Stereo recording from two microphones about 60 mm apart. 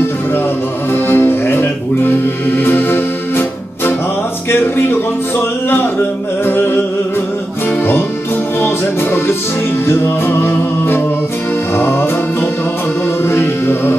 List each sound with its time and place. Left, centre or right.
0.9 s music: left
6.4 s music: left
8.5 s music: left